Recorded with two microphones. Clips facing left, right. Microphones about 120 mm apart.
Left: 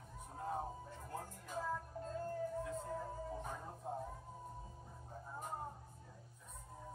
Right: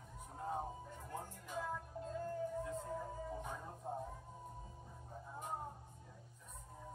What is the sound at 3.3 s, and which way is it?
Music, centre (ahead or behind).